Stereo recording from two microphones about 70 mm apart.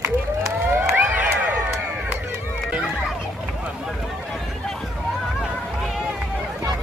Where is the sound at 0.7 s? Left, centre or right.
Right.